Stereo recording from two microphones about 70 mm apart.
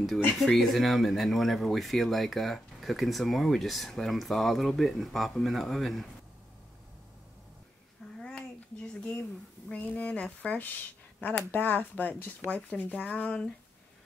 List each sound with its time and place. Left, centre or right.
0.4 s speech: centre
8.2 s a sound: centre
9.7 s speech: centre